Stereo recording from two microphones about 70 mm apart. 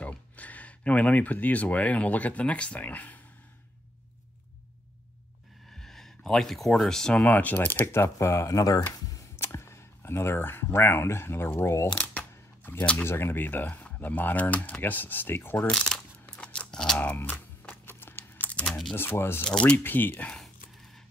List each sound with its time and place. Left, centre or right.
0.0 s speech: left
5.7 s speech: centre
7.3 s speech: left
7.9 s speech: left
9.0 s computer keyboard: left
9.4 s speech: left
12.0 s speech: left
16.3 s scissors: centre
17.0 s typing: left
18.7 s speech: centre
18.9 s speech: left